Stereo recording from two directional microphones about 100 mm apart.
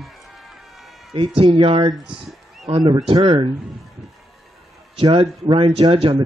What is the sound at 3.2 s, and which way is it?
Speech, 55° right (ahead or behind).